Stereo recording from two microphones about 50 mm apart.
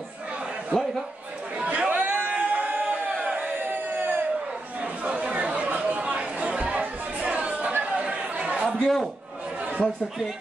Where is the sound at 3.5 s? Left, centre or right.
Right.